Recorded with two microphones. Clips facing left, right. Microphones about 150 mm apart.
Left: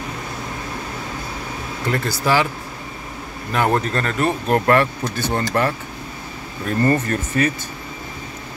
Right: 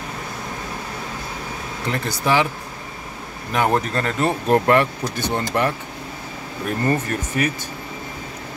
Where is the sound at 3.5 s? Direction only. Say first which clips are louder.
Even; 15° right (ahead or behind).